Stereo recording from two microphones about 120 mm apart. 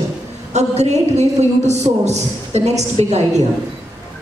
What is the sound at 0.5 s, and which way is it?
A man's voice, 65° right (ahead or behind).